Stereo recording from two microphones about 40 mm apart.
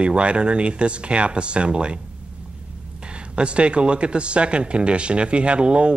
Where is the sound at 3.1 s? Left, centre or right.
Right.